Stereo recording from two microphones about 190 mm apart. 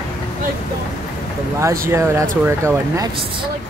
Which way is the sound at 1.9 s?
15° right (ahead or behind).